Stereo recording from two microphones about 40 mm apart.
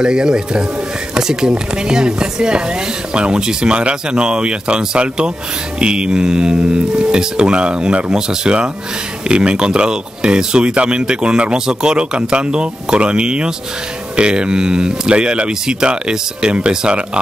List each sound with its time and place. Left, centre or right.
0.0 s speech: centre